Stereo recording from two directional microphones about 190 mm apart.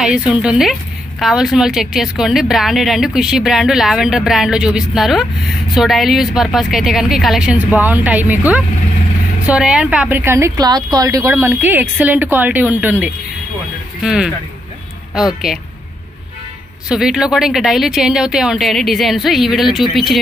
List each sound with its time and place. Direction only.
0.0 s speech: 5° right (ahead or behind)
9.5 s a woman's voice: 5° right (ahead or behind)
16.9 s speech: 5° right (ahead or behind)